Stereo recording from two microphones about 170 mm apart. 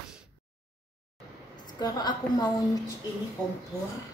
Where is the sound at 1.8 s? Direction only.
25° left (ahead or behind).